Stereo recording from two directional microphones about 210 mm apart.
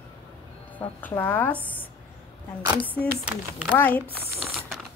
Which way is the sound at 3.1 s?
5° right (ahead or behind).